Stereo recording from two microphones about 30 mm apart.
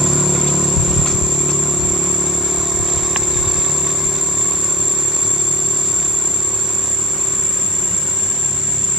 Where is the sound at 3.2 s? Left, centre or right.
Centre.